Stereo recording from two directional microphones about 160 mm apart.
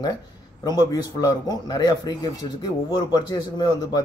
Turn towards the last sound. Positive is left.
turn(degrees=25)  # may be behind; listen again after turning